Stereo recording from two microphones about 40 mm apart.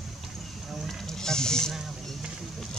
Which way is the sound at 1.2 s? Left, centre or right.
Centre.